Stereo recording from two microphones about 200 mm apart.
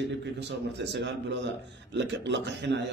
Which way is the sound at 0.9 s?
60° right (ahead or behind).